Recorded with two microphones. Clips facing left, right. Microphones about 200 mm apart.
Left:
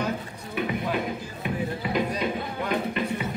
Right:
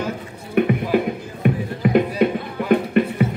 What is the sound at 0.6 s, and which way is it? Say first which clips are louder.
Music: right 9 dB; 60° right (ahead or behind).